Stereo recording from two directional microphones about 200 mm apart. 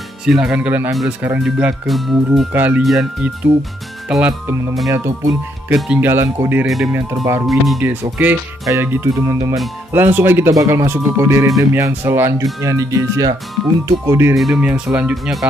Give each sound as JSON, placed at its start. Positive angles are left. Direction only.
{"t": 0.2, "sound": "speech", "side_deg": -5}
{"t": 4.8, "sound": "speech", "side_deg": -15}
{"t": 6.6, "sound": "speech", "side_deg": 0}
{"t": 14.3, "sound": "speech", "side_deg": 0}